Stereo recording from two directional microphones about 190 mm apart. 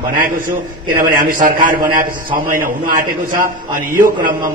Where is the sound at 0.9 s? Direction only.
45° right (ahead or behind).